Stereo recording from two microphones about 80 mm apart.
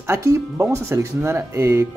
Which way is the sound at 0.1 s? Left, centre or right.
Right.